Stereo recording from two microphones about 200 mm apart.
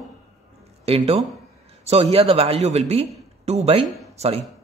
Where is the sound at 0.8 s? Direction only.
30° right (ahead or behind).